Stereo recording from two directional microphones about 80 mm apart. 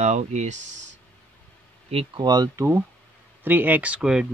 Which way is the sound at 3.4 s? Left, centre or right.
Right.